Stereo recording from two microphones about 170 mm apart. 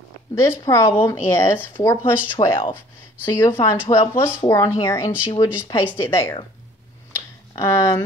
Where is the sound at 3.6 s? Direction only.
15° left (ahead or behind).